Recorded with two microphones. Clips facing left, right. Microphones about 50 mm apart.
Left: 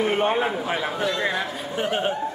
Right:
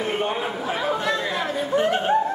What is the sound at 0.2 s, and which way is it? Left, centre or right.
Speech, left.